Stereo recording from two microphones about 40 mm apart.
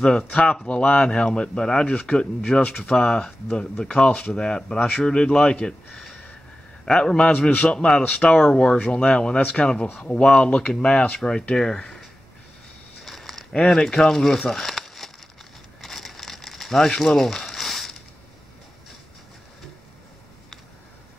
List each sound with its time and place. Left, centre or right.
0.3 s speech: left
8.5 s speech: left
9.4 s speech: left; by 12.0 s centre
13.0 s a sound: centre
13.5 s speech: centre
14.5 s crumpling: centre